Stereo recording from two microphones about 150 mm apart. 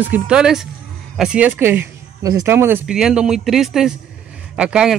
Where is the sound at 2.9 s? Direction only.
5° right (ahead or behind).